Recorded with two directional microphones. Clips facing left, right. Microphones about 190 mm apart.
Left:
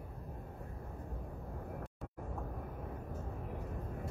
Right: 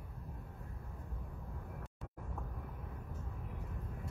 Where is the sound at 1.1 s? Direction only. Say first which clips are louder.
Left 4 dB; 45° left (ahead or behind).